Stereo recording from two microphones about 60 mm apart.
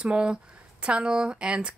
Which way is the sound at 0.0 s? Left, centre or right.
Centre.